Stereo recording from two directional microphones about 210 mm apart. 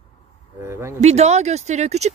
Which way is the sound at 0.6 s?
10° right (ahead or behind).